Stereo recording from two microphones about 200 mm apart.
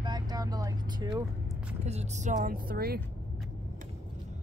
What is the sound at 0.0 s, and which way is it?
Vehicle, 20° right (ahead or behind).